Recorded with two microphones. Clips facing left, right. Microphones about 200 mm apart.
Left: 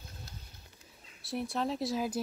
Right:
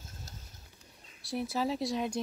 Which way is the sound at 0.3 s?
45° right (ahead or behind).